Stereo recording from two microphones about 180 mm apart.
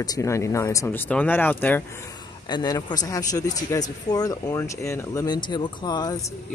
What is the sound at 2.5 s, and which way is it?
A man's voice, 20° left (ahead or behind).